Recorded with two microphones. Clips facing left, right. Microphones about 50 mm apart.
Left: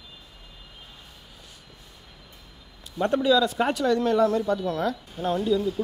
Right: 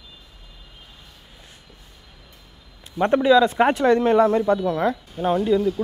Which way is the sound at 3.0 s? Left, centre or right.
Right.